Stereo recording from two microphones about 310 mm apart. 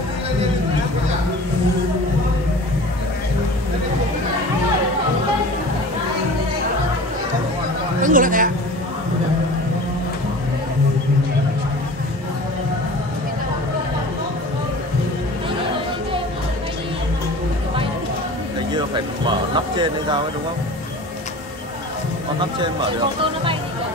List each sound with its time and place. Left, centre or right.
8.0 s a sound: right
18.8 s music: centre
22.4 s speech: centre